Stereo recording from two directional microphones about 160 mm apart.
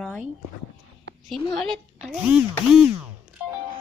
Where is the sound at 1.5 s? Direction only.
Centre (ahead or behind).